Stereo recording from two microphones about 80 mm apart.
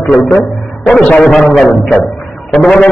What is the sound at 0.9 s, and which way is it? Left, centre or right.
A man's voice, centre.